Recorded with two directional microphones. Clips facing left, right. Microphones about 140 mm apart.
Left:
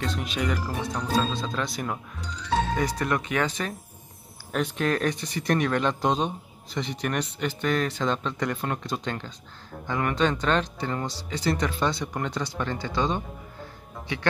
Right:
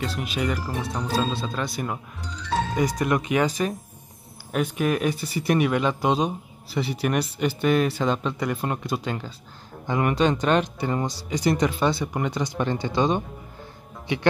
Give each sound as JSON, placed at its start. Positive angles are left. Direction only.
{"t": 0.0, "sound": "speech", "side_deg": -5}
{"t": 2.7, "sound": "speech", "side_deg": -15}